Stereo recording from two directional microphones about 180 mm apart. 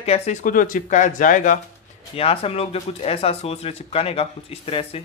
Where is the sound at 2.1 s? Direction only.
30° left (ahead or behind).